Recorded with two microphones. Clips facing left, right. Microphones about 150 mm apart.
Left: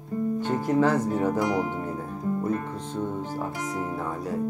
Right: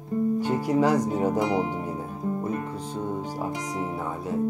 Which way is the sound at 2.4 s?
10° right (ahead or behind).